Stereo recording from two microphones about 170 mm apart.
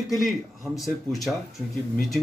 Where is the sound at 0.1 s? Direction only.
Centre (ahead or behind).